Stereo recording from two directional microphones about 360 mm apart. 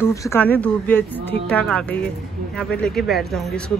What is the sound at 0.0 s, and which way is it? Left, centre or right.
Speech, centre.